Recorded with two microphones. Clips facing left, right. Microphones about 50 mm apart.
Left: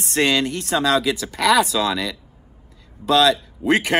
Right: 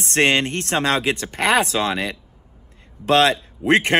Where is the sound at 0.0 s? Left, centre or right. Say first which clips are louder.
Right 1 dB; right.